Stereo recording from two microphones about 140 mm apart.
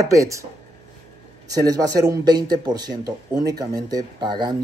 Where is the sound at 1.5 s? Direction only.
25° right (ahead or behind).